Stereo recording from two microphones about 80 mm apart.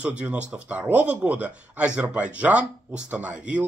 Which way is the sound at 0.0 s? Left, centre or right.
Centre.